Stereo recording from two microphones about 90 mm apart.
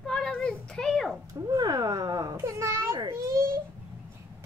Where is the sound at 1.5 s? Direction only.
45° right (ahead or behind).